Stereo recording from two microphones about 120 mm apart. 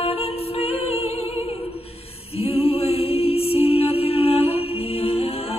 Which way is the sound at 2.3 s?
55° left (ahead or behind).